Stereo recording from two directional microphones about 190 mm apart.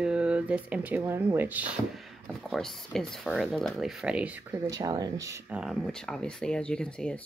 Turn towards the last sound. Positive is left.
turn(degrees=5)  # may be behind; listen again after turning